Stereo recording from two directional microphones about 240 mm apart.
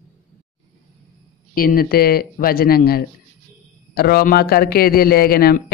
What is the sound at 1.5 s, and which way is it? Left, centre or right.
A man's voice, left.